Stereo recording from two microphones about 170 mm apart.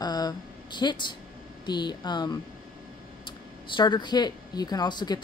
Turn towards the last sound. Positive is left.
turn(degrees=25)  # may be behind; listen again after turning